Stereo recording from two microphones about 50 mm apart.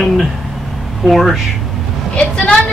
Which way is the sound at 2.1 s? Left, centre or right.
Centre.